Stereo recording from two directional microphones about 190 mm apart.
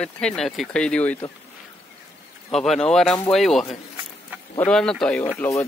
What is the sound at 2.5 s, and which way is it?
Speech, centre (ahead or behind).